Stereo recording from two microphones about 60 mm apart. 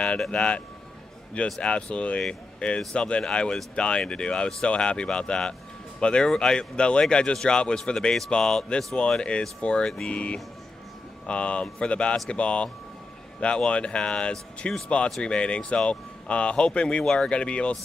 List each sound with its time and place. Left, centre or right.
0.2 s speech: centre